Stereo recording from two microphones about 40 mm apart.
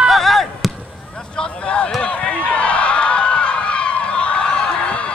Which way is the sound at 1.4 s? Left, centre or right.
Left.